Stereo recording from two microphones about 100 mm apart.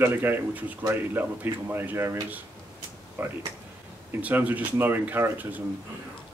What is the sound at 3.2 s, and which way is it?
A man's voice, 20° right (ahead or behind).